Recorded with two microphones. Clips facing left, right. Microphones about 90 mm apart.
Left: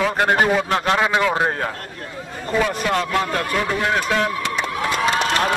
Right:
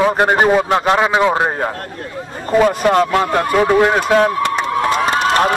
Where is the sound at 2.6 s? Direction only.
45° right (ahead or behind).